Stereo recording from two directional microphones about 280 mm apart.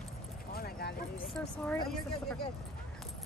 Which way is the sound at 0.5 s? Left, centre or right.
Left.